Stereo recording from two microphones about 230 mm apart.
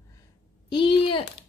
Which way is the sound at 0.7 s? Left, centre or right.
Left.